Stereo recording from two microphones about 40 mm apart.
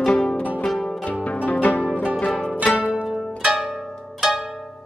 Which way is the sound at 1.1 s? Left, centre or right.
Left.